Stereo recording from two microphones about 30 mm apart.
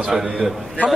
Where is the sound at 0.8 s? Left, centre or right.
Left.